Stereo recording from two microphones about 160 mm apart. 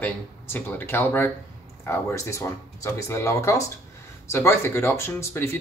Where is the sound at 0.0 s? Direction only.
10° left (ahead or behind).